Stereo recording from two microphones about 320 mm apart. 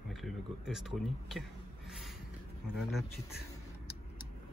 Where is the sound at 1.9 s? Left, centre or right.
Centre.